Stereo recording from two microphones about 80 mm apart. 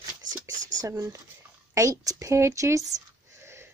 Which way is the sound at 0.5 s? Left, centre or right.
Right.